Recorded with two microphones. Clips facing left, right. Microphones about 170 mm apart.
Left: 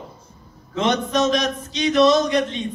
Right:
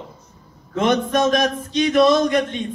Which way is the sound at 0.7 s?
50° right (ahead or behind).